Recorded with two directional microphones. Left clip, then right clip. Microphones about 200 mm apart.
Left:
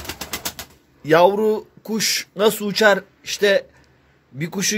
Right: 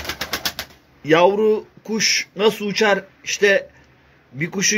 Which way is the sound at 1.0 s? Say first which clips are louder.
Even; 25° left (ahead or behind).